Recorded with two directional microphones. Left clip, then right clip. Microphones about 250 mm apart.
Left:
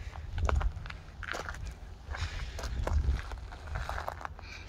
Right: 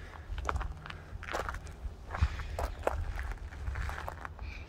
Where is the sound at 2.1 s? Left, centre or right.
Centre.